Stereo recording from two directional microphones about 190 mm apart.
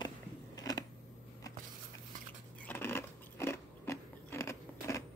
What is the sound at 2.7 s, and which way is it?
Scissors, 10° left (ahead or behind).